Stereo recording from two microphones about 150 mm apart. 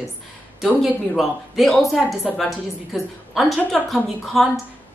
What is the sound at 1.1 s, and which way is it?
Speech, centre (ahead or behind).